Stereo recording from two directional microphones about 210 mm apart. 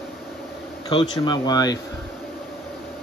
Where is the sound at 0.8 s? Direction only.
20° left (ahead or behind).